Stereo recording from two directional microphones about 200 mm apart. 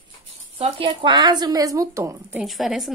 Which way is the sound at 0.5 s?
25° right (ahead or behind).